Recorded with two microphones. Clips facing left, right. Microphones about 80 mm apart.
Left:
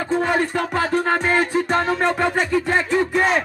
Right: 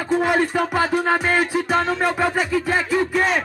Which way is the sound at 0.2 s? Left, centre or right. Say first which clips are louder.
Right 1 dB; centre.